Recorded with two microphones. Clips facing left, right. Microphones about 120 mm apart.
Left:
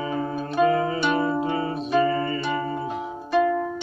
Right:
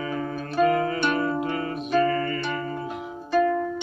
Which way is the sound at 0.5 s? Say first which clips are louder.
Left 1 dB; 10° left (ahead or behind).